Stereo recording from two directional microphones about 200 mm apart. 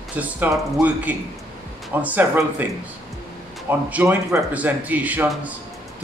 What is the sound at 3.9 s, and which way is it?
A man's voice, 10° right (ahead or behind).